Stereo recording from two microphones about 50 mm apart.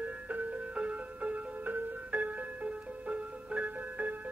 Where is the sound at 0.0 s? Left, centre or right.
Right.